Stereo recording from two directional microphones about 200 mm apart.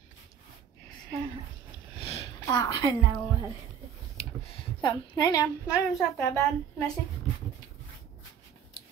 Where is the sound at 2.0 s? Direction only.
25° left (ahead or behind).